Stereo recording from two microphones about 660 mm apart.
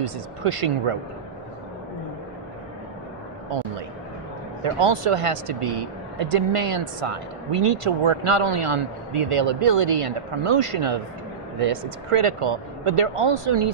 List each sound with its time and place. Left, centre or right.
0.0 s speech: right
4.6 s speech: right